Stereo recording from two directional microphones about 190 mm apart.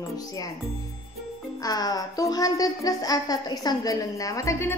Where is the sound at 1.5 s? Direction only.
20° left (ahead or behind).